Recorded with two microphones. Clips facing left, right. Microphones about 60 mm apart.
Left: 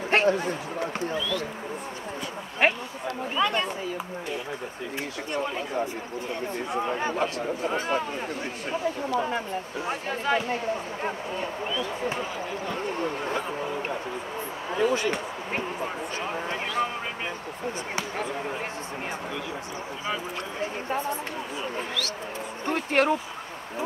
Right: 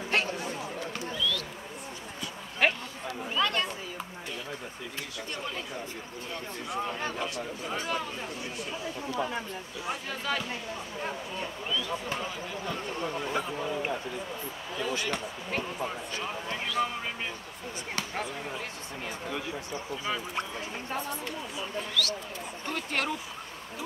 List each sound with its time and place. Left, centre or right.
0.1 s a sound: left
2.6 s a sound: left
6.8 s speech: left
7.2 s speech: left
7.7 s speech: left
9.8 s speech: left
14.7 s speech: left
15.0 s speech: left
20.6 s speech: left